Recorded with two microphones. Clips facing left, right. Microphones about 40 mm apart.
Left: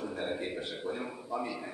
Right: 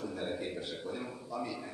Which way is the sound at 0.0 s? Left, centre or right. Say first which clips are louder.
Left 2 dB; left.